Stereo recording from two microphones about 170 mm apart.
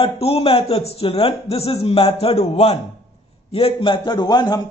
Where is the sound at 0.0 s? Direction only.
35° left (ahead or behind).